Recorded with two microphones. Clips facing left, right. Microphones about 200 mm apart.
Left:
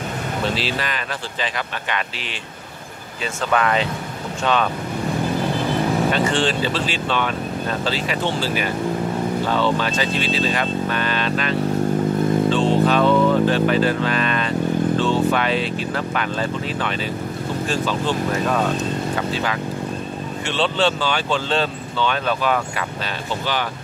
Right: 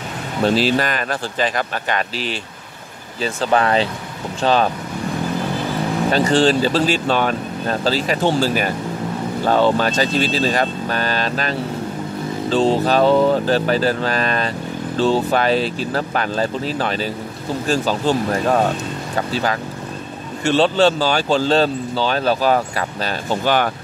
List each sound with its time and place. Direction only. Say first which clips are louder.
0.6 s speech: right 7 dB; 45° right (ahead or behind)
3.4 s speech: right 3 dB; 35° right (ahead or behind)
6.1 s speech: right 5 dB; 40° right (ahead or behind)
20.4 s speech: right 6 dB; 40° right (ahead or behind)
23.4 s speech: right 8 dB; 50° right (ahead or behind)